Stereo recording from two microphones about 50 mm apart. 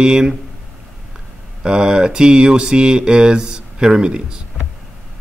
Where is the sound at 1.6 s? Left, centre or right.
Centre.